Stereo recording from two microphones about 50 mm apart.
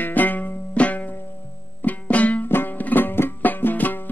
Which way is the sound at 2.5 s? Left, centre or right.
Left.